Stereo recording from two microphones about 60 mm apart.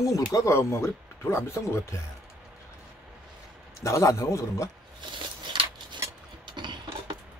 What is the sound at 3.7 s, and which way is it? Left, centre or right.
Speech, left.